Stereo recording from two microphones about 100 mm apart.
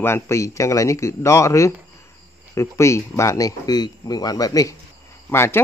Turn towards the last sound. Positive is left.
turn(degrees=25)  # may be behind; listen again after turning